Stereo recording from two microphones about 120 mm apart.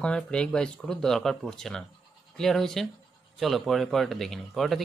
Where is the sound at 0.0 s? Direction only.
10° left (ahead or behind).